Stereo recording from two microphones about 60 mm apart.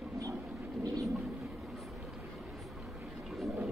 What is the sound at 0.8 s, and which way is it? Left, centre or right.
Thunder, right.